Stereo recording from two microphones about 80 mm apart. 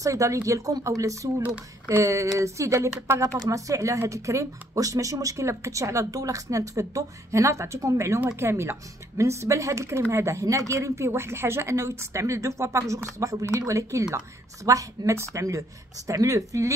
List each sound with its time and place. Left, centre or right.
0.0 s speech: right